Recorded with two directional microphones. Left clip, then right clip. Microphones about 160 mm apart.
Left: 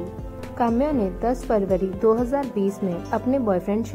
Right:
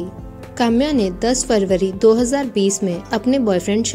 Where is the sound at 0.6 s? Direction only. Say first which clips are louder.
Right 5 dB; 35° right (ahead or behind).